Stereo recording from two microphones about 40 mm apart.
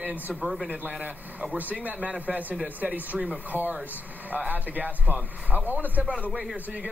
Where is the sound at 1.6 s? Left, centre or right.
Right.